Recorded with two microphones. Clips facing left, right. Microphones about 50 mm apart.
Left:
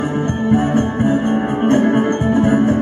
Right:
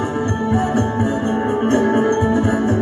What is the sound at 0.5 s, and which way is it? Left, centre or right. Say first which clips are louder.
Music: left 4 dB; left.